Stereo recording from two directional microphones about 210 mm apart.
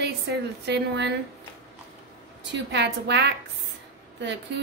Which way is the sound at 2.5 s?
55° right (ahead or behind).